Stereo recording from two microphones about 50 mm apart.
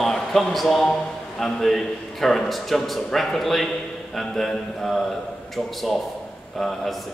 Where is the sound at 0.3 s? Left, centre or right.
Centre.